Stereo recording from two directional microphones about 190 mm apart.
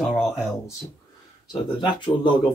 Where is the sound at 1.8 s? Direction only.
25° left (ahead or behind).